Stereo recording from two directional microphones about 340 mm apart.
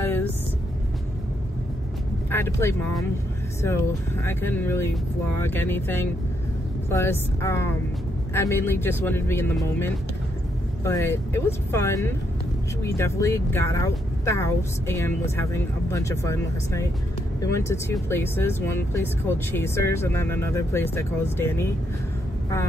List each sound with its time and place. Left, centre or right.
0.0 s vehicle: centre
2.3 s speech: centre